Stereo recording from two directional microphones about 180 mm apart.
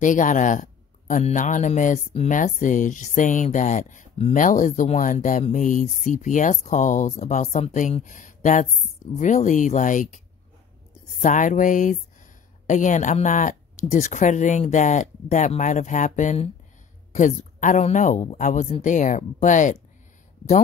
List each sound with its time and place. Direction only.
0.0 s speech: 45° left (ahead or behind)